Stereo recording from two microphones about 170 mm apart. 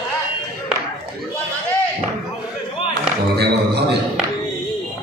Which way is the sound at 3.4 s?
75° right (ahead or behind).